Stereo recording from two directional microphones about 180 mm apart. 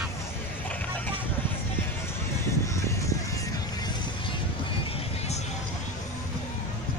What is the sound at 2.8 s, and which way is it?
Music, 15° left (ahead or behind).